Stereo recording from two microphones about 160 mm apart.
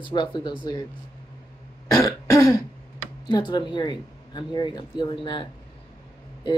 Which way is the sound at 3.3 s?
30° left (ahead or behind).